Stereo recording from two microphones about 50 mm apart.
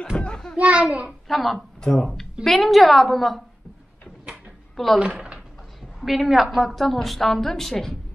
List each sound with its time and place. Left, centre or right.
0.2 s children playing: centre
0.6 s a child's voice: right
1.2 s a woman's voice: centre
1.8 s speech: centre
2.4 s a woman's voice: centre
5.0 s speech: right
5.8 s a woman's voice: centre